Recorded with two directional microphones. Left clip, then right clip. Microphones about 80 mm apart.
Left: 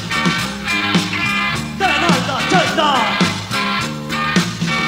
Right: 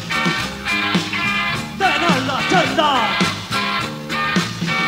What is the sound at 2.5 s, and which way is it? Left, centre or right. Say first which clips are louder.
Music: left 1 dB; right.